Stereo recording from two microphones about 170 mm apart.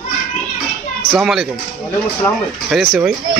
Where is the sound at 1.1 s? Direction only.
Centre (ahead or behind).